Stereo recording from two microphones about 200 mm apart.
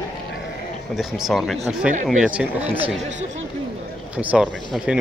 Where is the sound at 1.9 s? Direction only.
40° right (ahead or behind).